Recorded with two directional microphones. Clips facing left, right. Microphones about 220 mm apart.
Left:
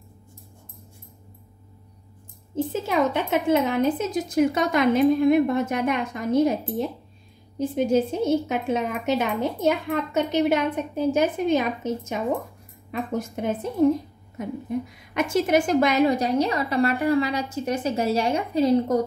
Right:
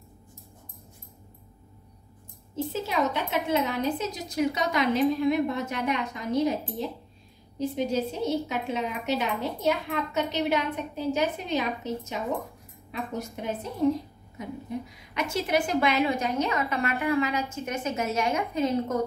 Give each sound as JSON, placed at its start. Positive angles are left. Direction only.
{"t": 2.5, "sound": "a woman's voice", "side_deg": 50}
{"t": 15.1, "sound": "a woman's voice", "side_deg": 50}